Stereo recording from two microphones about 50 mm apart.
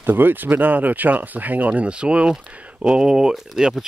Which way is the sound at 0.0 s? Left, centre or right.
Right.